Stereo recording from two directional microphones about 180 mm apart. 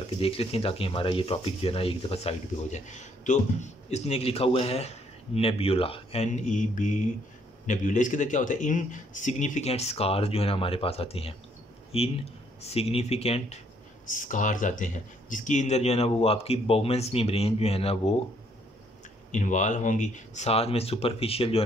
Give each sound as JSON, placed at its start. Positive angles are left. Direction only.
{"t": 0.2, "sound": "speech", "side_deg": 30}
{"t": 14.1, "sound": "speech", "side_deg": 45}
{"t": 19.3, "sound": "speech", "side_deg": 45}